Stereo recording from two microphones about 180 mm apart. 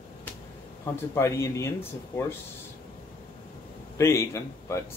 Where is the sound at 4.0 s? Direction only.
15° left (ahead or behind).